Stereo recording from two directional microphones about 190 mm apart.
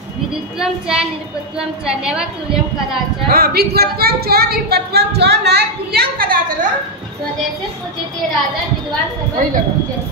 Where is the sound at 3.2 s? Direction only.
55° right (ahead or behind).